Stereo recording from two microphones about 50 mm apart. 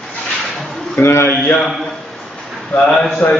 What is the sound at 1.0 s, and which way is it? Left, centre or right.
Speech, left.